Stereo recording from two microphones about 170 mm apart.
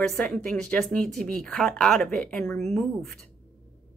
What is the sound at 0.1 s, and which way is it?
Speech, 5° left (ahead or behind).